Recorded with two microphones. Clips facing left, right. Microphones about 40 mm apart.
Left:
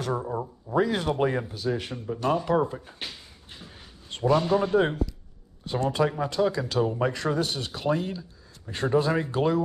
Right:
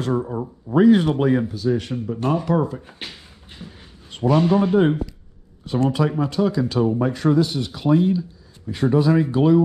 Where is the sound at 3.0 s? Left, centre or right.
Right.